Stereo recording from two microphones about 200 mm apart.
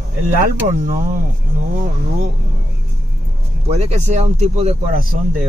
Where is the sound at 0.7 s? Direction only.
45° right (ahead or behind).